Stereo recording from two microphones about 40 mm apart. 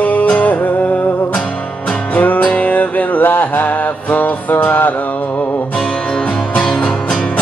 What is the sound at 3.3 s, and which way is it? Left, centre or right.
Music, left.